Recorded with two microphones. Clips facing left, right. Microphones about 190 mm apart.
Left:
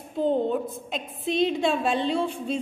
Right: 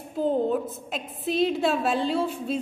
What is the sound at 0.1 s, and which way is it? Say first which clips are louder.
A woman's voice: even; 5° right (ahead or behind).